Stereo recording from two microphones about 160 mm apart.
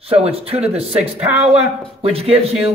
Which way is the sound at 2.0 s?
40° right (ahead or behind).